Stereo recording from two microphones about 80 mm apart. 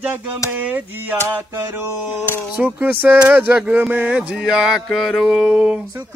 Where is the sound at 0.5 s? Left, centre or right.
Right.